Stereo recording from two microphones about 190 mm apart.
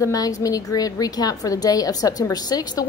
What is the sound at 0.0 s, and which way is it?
A woman's voice, 20° left (ahead or behind).